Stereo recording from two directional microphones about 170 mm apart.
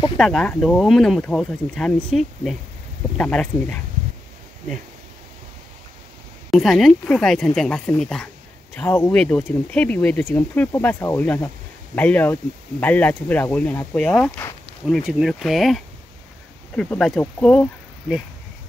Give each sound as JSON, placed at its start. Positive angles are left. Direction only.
{"t": 0.2, "sound": "speech", "side_deg": 5}
{"t": 6.5, "sound": "speech", "side_deg": 0}
{"t": 14.9, "sound": "speech", "side_deg": -5}